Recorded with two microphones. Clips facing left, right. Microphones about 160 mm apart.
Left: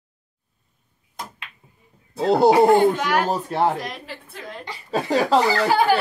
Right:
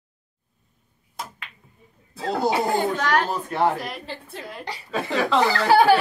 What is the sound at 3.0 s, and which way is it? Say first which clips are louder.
Speech: even; 10° left (ahead or behind).